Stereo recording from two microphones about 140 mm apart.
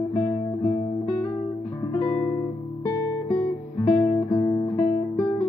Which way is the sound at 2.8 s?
20° left (ahead or behind).